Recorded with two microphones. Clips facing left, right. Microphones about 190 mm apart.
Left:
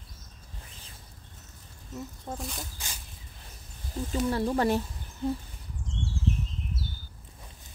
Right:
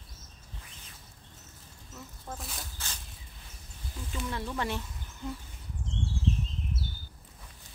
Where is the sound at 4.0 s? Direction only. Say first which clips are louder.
Left 9 dB; 40° left (ahead or behind).